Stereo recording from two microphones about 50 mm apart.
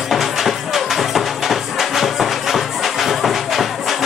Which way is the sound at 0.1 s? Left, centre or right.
Centre.